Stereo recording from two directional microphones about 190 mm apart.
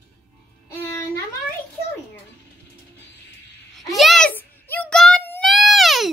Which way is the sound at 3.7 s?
Centre (ahead or behind).